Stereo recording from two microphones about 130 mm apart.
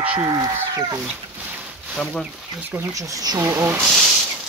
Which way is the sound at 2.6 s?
15° right (ahead or behind).